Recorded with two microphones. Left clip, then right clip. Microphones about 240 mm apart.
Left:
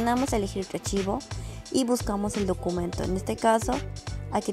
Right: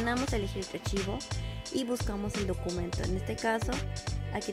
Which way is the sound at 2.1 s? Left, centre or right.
Centre.